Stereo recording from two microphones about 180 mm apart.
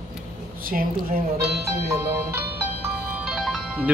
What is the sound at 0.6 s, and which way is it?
Speech, 50° right (ahead or behind).